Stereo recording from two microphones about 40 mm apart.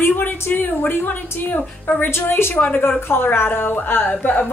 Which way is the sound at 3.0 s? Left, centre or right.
Left.